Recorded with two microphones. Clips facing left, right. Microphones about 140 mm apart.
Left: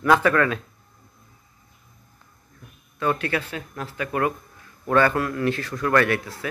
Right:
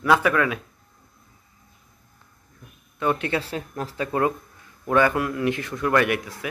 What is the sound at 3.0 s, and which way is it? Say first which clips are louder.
Speech: even; 20° right (ahead or behind).